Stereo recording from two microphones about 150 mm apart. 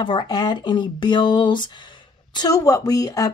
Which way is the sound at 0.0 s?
30° left (ahead or behind).